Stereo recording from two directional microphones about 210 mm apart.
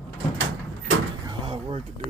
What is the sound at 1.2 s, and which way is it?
Door, 20° right (ahead or behind).